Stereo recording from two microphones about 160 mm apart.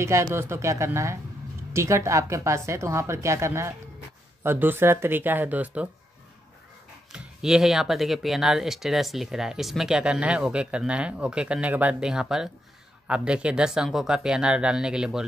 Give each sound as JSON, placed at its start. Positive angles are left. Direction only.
{"t": 0.0, "sound": "a woman's voice", "side_deg": -15}
{"t": 7.1, "sound": "speech", "side_deg": -5}